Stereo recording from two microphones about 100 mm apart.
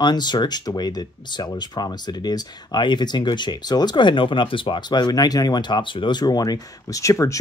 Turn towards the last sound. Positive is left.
turn(degrees=30)  # may be behind; listen again after turning